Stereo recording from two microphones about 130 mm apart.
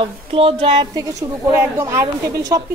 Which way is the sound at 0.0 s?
45° right (ahead or behind).